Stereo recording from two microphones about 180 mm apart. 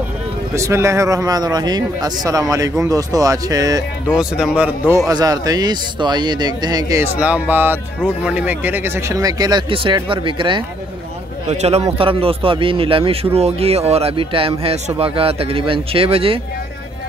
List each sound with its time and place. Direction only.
0.6 s a man's voice: 15° right (ahead or behind)
4.1 s a man's voice: 5° right (ahead or behind); by 16.3 s 30° right (ahead or behind)